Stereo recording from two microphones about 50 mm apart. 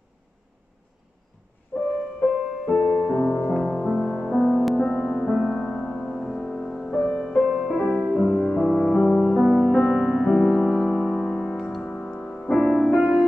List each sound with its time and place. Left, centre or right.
1.7 s music: centre
4.4 s music: centre
7.4 s music: centre
8.4 s music: centre
8.9 s music: left
12.7 s music: centre